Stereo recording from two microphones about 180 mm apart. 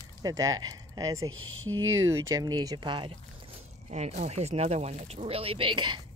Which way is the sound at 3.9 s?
40° right (ahead or behind).